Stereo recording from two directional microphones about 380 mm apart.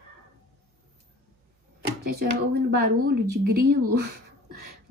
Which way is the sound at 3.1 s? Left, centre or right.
Right.